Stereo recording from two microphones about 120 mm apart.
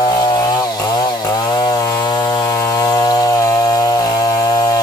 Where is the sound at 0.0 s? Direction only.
30° left (ahead or behind).